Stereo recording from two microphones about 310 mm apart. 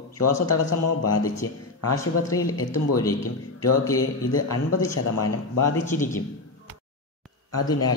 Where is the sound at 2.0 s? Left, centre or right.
Centre.